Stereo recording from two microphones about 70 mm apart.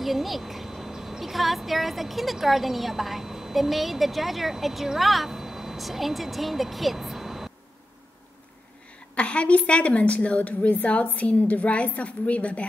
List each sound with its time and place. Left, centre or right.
0.0 s speech: centre
9.1 s a woman's voice: centre